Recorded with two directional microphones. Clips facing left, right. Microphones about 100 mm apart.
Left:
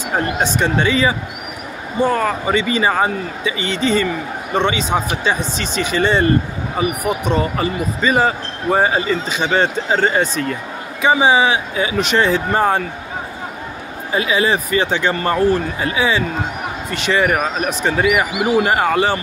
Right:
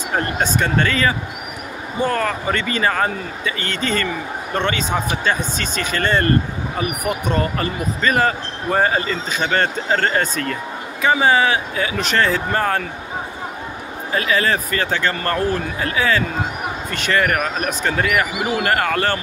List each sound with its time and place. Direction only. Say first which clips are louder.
0.1 s speech: left 2 dB; 15° left (ahead or behind)
14.1 s speech: left 2 dB; 15° left (ahead or behind)